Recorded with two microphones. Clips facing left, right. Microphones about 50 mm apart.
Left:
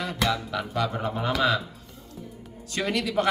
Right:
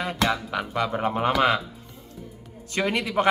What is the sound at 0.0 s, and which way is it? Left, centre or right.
Speech, right.